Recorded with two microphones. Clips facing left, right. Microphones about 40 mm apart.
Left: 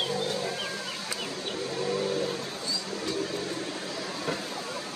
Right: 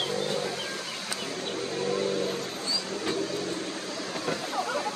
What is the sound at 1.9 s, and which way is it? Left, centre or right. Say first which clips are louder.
Vehicle: right 1 dB; centre.